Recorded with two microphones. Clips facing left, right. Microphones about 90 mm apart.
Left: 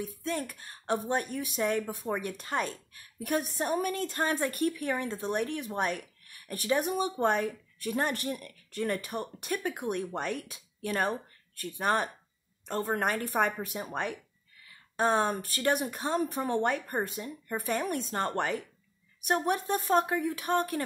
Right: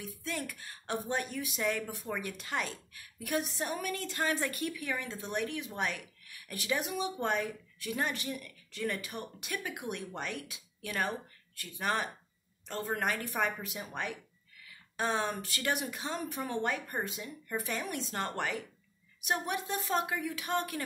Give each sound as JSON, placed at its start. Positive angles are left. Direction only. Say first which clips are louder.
{"t": 0.0, "sound": "a woman's voice", "louder": "left 5 dB", "side_deg": 40}